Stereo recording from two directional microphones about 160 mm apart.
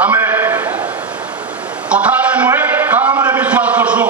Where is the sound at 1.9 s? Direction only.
10° right (ahead or behind).